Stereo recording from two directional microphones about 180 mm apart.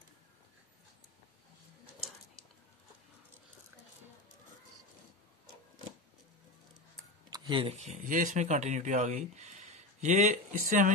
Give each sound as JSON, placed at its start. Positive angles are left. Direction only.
{"t": 7.2, "sound": "speech", "side_deg": -25}